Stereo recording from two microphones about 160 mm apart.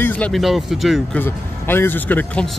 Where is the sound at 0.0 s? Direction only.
10° left (ahead or behind).